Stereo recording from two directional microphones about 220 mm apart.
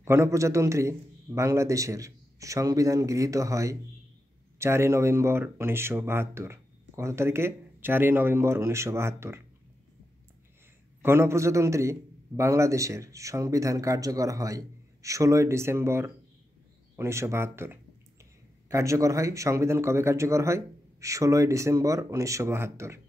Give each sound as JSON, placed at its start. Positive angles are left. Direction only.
{"t": 0.0, "sound": "a man's voice", "side_deg": -10}
{"t": 11.0, "sound": "a man's voice", "side_deg": -10}